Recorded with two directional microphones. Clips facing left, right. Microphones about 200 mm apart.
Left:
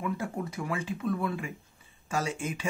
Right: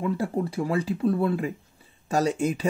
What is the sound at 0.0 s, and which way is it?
Speech, 30° right (ahead or behind).